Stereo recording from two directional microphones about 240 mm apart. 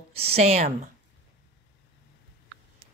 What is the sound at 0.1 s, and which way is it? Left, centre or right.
Speech, right.